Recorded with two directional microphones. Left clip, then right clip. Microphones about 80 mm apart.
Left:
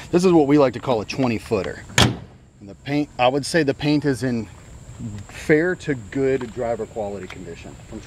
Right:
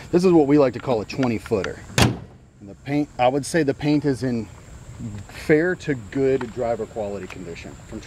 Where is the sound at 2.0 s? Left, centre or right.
Centre.